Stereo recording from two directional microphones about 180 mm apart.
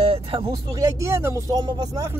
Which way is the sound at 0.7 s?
15° right (ahead or behind).